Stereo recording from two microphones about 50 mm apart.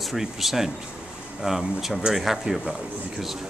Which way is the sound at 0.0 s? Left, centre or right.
Centre.